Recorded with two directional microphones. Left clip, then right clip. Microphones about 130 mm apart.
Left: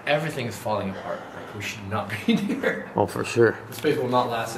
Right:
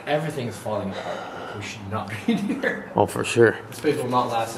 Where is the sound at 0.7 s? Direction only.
40° left (ahead or behind).